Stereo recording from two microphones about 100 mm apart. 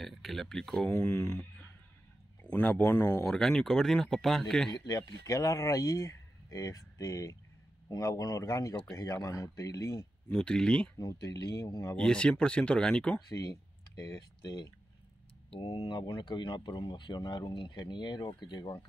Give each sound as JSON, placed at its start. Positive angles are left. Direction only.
{"t": 0.0, "sound": "speech", "side_deg": 0}
{"t": 2.4, "sound": "speech", "side_deg": 10}
{"t": 2.8, "sound": "speech", "side_deg": 25}
{"t": 3.3, "sound": "speech", "side_deg": 5}
{"t": 4.7, "sound": "speech", "side_deg": 40}
{"t": 10.3, "sound": "speech", "side_deg": 10}
{"t": 11.0, "sound": "speech", "side_deg": 35}
{"t": 12.0, "sound": "speech", "side_deg": 10}
{"t": 13.3, "sound": "speech", "side_deg": 35}
{"t": 15.5, "sound": "speech", "side_deg": 60}